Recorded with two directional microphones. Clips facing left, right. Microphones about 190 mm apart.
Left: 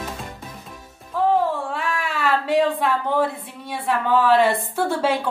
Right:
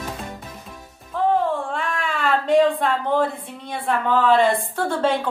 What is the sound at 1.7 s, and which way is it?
Speech, 5° left (ahead or behind).